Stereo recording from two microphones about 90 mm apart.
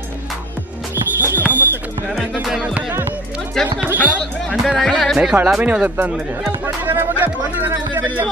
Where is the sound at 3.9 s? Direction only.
15° left (ahead or behind).